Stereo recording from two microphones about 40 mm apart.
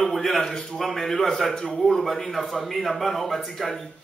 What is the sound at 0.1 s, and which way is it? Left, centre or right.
A man's voice, centre.